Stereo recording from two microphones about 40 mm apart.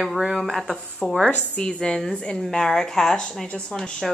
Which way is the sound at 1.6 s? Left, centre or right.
Left.